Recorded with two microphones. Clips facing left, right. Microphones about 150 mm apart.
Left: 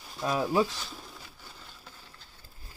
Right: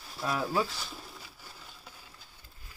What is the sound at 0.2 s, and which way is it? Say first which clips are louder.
Speech: left 4 dB; 15° left (ahead or behind).